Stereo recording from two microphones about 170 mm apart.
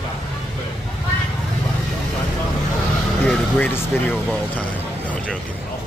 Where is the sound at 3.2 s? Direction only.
10° left (ahead or behind).